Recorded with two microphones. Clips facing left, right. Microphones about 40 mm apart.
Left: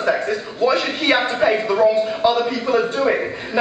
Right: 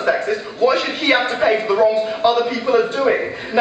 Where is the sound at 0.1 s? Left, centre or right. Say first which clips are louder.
Right 3 dB; centre.